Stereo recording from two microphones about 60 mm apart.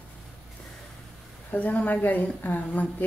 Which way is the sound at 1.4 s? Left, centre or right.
Left.